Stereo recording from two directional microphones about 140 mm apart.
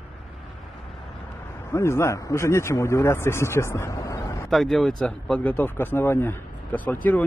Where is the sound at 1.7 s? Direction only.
20° left (ahead or behind).